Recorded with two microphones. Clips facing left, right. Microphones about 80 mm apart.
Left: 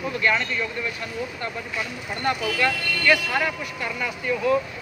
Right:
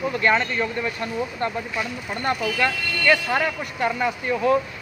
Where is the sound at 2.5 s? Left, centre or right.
Right.